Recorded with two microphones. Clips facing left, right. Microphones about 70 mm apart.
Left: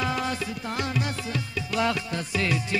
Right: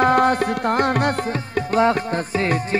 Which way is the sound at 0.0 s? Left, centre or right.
Right.